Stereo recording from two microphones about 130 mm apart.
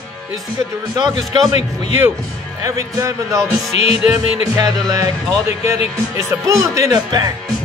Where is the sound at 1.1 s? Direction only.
30° right (ahead or behind).